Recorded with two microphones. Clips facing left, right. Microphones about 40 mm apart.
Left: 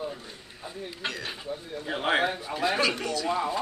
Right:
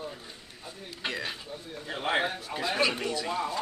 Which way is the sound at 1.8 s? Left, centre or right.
Left.